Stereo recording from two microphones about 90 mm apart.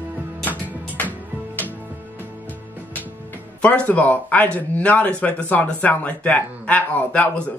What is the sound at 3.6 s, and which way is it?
Speech, 15° left (ahead or behind).